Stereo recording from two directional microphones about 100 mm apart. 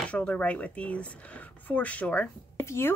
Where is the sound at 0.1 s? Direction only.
15° left (ahead or behind).